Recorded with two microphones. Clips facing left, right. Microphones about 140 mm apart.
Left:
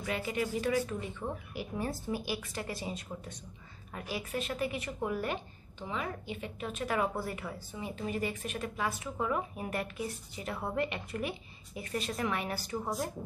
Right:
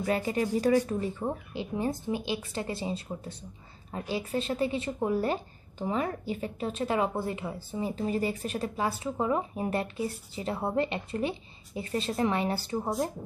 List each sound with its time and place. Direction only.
0.0 s a woman's voice: 35° right (ahead or behind)
1.6 s a woman's voice: 20° right (ahead or behind)